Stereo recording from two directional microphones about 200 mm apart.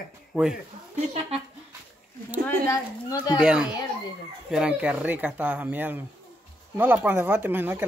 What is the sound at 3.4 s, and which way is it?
Speech, 5° right (ahead or behind).